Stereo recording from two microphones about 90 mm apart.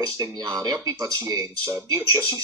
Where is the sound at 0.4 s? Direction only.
45° right (ahead or behind).